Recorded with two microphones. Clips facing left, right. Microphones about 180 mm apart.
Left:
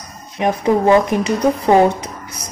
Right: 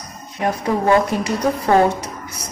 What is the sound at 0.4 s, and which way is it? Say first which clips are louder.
A woman's voice: left 4 dB; 20° left (ahead or behind).